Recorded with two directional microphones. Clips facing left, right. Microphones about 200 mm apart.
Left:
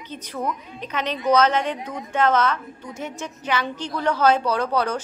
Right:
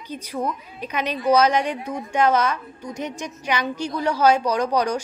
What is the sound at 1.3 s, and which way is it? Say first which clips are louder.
A woman's voice: right 1 dB; 10° right (ahead or behind).